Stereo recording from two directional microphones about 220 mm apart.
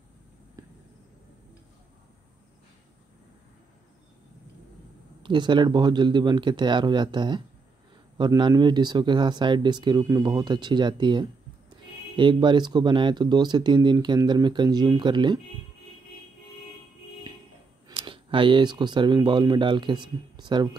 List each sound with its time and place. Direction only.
5.2 s speech: 20° right (ahead or behind)
17.8 s speech: 20° right (ahead or behind)